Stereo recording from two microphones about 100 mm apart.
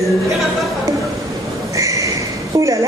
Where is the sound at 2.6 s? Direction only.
30° right (ahead or behind).